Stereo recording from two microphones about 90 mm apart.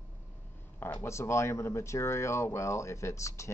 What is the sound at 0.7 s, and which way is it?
Speech, 25° left (ahead or behind).